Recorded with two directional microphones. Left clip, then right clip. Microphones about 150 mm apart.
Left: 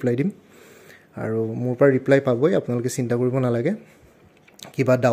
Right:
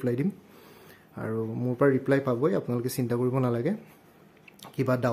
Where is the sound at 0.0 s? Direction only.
20° left (ahead or behind).